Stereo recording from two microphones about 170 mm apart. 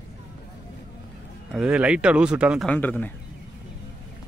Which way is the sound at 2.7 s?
10° left (ahead or behind).